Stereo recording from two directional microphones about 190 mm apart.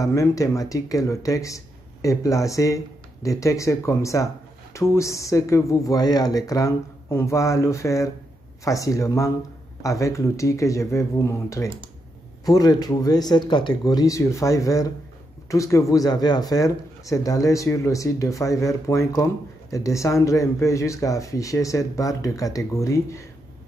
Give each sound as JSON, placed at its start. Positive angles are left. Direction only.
{"t": 0.0, "sound": "speech", "side_deg": 15}